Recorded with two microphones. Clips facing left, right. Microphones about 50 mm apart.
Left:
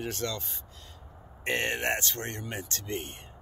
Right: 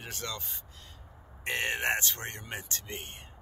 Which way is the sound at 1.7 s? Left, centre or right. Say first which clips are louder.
Even; centre.